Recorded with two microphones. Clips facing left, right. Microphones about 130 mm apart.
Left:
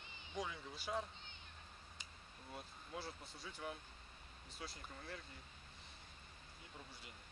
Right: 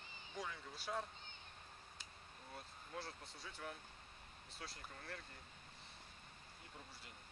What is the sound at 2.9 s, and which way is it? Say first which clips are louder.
Speech: left 1 dB; centre (ahead or behind).